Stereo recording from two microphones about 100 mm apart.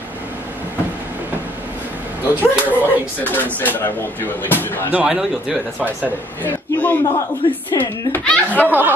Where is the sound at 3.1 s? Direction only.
20° left (ahead or behind).